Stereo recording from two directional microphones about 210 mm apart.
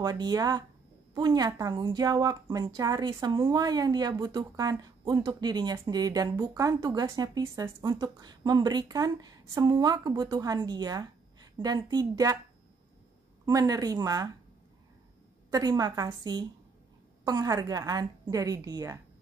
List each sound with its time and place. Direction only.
0.0 s a woman's voice: 20° right (ahead or behind)
13.5 s a woman's voice: 15° right (ahead or behind)
15.5 s a woman's voice: 20° right (ahead or behind)